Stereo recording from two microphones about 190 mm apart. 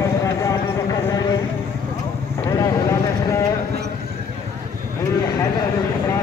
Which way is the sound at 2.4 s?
15° left (ahead or behind).